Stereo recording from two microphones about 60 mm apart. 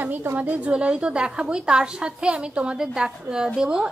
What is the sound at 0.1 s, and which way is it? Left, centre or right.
Speech, right.